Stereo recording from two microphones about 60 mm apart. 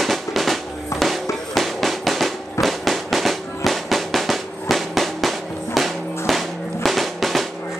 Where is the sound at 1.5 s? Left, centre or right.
Centre.